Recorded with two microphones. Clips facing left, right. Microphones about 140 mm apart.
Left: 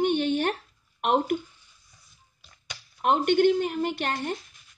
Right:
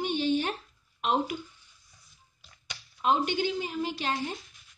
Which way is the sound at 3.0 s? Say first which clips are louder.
Left 6 dB; 60° left (ahead or behind).